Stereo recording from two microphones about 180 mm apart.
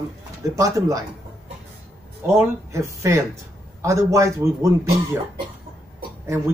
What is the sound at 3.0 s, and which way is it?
Speech, 15° right (ahead or behind).